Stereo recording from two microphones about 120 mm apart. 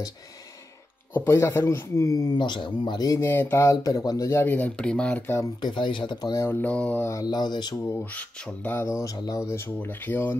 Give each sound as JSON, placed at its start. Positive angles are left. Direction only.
{"t": 1.1, "sound": "a man's voice", "side_deg": 20}
{"t": 5.6, "sound": "speech", "side_deg": 40}
{"t": 6.3, "sound": "speech", "side_deg": 20}
{"t": 7.1, "sound": "speech", "side_deg": 30}
{"t": 7.8, "sound": "a man's voice", "side_deg": 25}
{"t": 8.1, "sound": "speech", "side_deg": 10}
{"t": 8.8, "sound": "a man's voice", "side_deg": 25}